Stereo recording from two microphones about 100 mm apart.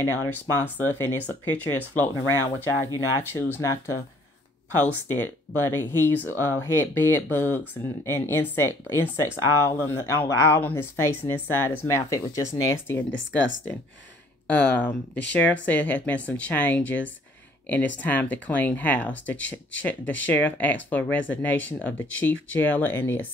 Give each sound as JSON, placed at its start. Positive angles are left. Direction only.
{"t": 0.0, "sound": "speech", "side_deg": 25}
{"t": 4.7, "sound": "speech", "side_deg": 20}
{"t": 14.5, "sound": "speech", "side_deg": 15}